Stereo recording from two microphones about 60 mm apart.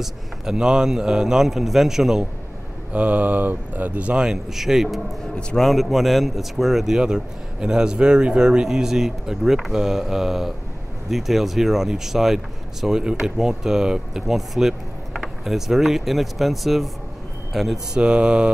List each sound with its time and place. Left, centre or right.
0.0 s a man's voice: centre
2.9 s a man's voice: right; by 17.7 s centre
17.9 s a man's voice: centre